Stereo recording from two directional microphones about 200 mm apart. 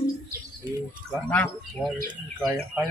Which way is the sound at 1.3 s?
5° left (ahead or behind).